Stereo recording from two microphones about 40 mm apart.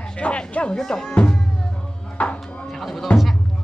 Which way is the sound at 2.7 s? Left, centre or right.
Centre.